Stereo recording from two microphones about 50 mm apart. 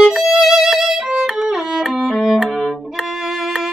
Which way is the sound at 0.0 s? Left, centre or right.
Centre.